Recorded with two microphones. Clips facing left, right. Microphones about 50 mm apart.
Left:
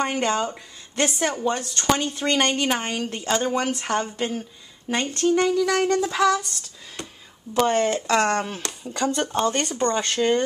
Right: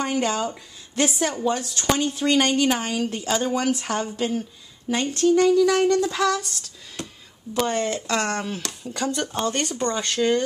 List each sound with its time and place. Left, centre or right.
0.0 s a woman's voice: centre
7.7 s speech: left
8.6 s speech: centre